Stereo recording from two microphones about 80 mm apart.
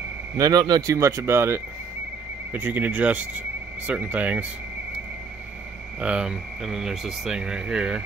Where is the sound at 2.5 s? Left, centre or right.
Right.